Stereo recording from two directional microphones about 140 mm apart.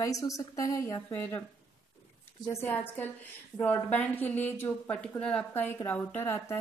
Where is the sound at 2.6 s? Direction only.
15° left (ahead or behind).